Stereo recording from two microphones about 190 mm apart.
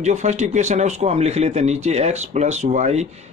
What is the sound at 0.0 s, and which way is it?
Speech, 40° right (ahead or behind).